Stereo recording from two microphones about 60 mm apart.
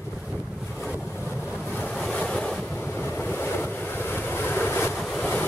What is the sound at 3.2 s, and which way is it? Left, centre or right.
Waves, left.